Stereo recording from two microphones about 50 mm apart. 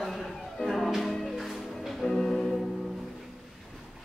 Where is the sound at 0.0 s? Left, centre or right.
Centre.